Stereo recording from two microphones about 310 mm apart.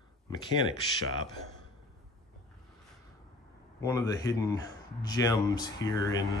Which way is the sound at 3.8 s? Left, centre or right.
Centre.